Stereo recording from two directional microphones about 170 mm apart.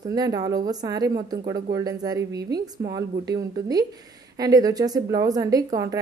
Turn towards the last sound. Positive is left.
turn(degrees=-20)  # may be behind; listen again after turning